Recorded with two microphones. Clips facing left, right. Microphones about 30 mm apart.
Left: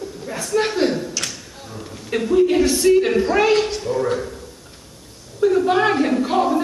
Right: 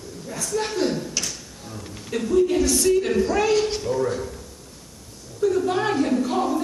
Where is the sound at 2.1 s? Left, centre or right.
Left.